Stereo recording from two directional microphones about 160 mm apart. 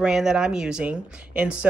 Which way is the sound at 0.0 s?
5° right (ahead or behind).